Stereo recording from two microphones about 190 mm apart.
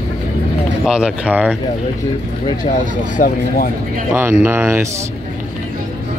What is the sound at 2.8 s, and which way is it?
Speech, 45° left (ahead or behind).